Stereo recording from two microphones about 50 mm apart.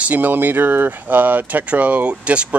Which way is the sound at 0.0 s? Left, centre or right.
Right.